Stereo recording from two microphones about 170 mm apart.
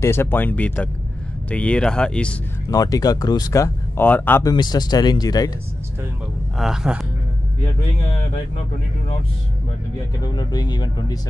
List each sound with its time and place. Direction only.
0.0 s speech: 15° left (ahead or behind)
2.7 s speech: 20° left (ahead or behind)
6.6 s speech: 5° right (ahead or behind)
10.2 s speech: 25° left (ahead or behind)